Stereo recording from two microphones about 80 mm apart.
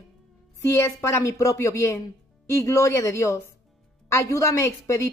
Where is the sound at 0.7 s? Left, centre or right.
Left.